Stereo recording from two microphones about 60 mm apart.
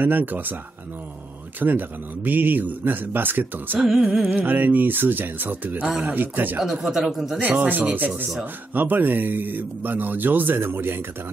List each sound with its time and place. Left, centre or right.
0.0 s speech: right
1.6 s speech: right
3.8 s music: centre
4.3 s speech: right
6.9 s speech: centre
7.3 s speech: right